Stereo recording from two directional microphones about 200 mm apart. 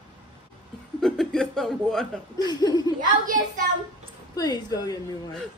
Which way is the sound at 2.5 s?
20° left (ahead or behind).